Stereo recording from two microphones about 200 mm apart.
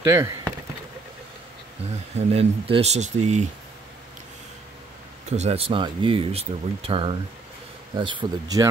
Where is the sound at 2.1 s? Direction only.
30° right (ahead or behind).